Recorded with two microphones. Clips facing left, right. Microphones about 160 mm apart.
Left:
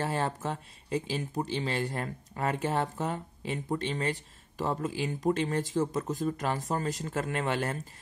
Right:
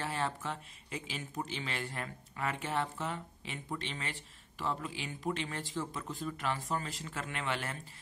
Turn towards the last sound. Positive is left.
turn(degrees=40)  # may be behind; listen again after turning